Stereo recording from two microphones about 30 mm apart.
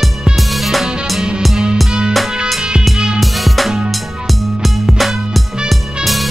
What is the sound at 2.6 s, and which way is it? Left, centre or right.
Music, right.